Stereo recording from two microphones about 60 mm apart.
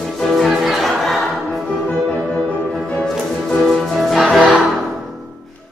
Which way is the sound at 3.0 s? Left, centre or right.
Centre.